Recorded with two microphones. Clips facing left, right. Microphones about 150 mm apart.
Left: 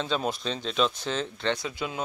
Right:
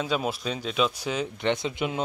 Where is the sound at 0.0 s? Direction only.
5° right (ahead or behind).